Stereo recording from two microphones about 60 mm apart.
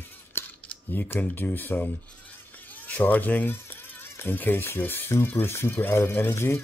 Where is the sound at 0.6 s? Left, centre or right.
Left.